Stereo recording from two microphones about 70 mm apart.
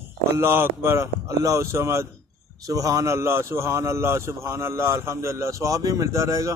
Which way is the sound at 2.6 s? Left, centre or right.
Right.